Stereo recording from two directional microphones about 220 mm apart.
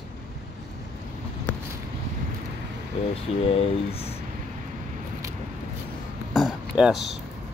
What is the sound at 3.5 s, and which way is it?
Speech, 25° left (ahead or behind).